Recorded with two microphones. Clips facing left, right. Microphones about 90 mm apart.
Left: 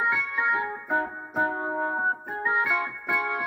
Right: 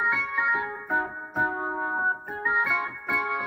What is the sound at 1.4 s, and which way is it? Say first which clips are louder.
Music: left 1 dB; 15° right (ahead or behind).